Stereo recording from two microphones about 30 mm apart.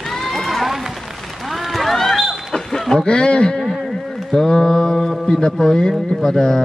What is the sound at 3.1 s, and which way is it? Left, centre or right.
Speech, left.